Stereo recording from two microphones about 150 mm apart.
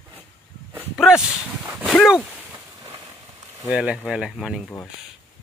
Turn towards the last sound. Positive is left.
turn(degrees=0)  # may be behind; listen again after turning